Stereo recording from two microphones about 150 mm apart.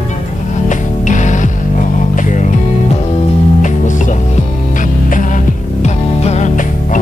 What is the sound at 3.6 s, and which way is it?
Music, 55° left (ahead or behind).